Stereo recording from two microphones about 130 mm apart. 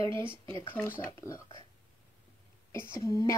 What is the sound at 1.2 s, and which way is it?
Speech, 20° left (ahead or behind).